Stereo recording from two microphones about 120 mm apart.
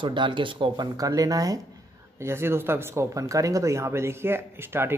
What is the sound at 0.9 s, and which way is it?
Speech, 30° right (ahead or behind).